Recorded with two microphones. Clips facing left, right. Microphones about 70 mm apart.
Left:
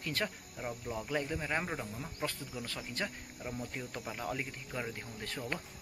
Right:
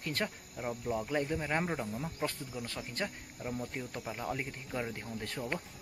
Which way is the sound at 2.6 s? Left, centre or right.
Right.